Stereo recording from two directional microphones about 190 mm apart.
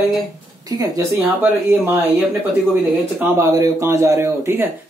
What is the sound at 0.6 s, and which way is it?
Speech, 20° right (ahead or behind).